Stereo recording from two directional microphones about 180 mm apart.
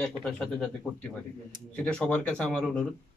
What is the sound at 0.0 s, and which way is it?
Speech, 5° left (ahead or behind).